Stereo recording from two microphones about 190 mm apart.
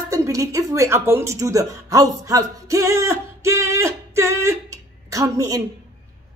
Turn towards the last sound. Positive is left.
turn(degrees=-20)  # may be behind; listen again after turning